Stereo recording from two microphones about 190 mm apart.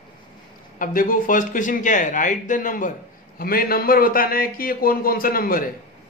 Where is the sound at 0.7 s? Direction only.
45° left (ahead or behind).